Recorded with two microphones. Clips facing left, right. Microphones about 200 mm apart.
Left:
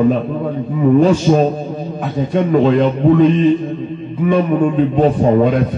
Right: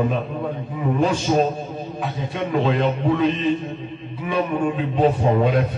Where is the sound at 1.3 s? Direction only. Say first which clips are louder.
Left 6 dB; 45° left (ahead or behind).